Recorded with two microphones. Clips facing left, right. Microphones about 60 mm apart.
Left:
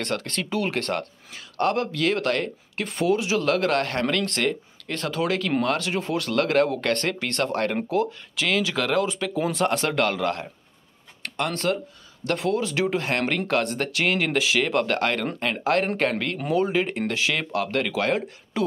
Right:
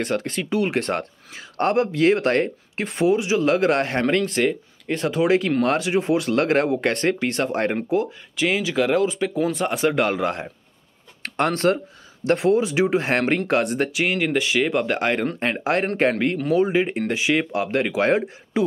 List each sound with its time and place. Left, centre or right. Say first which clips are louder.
0.0 s speech: right 4 dB; centre
0.7 s speech: right 3 dB; right
2.7 s speech: right 3 dB; centre
11.2 s speech: right 5 dB; right
13.9 s speech: left 2 dB; centre; by 16.3 s right
16.5 s speech: right 2 dB; centre